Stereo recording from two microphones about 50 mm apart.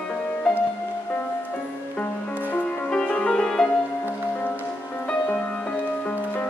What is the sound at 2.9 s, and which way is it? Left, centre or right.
Music, centre.